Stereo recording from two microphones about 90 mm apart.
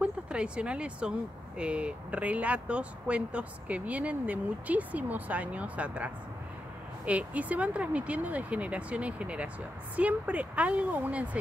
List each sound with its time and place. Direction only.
0.0 s speech: 10° right (ahead or behind)